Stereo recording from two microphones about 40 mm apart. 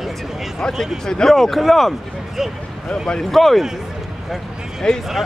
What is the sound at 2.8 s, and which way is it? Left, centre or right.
Speech, left.